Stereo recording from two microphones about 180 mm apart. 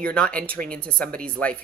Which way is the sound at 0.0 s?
5° left (ahead or behind).